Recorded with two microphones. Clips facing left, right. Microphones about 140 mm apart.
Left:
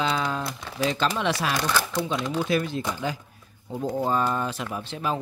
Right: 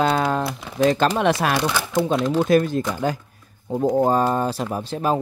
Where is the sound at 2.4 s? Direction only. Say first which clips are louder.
Right 8 dB; 45° right (ahead or behind).